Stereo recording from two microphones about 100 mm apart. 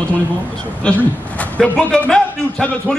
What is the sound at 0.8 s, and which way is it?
A man's voice, 10° left (ahead or behind).